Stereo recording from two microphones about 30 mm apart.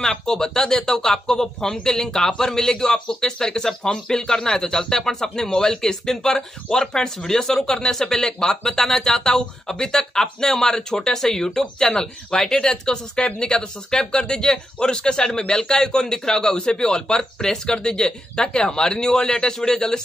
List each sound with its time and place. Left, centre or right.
0.0 s speech: centre